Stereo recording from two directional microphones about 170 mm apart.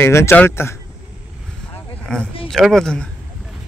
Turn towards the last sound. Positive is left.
turn(degrees=5)  # may be behind; listen again after turning